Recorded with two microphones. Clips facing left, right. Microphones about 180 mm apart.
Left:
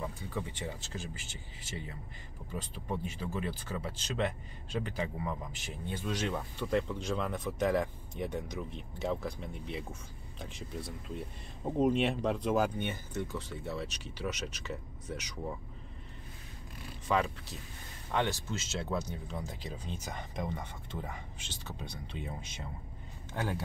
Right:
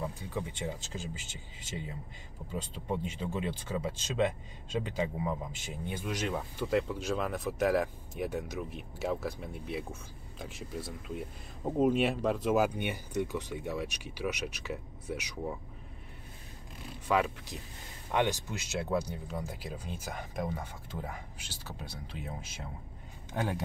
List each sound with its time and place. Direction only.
0.0 s speech: 10° right (ahead or behind)
2.5 s speech: 20° right (ahead or behind)
17.1 s speech: 10° right (ahead or behind)
23.3 s speech: 15° right (ahead or behind)